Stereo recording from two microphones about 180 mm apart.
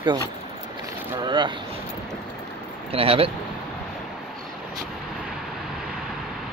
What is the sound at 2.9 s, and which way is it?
Speech, 30° right (ahead or behind).